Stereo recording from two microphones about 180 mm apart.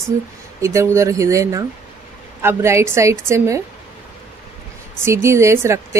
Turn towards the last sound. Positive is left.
turn(degrees=-15)  # may be behind; listen again after turning